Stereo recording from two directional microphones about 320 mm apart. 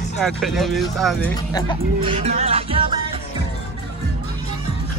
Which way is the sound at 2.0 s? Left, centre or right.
Centre.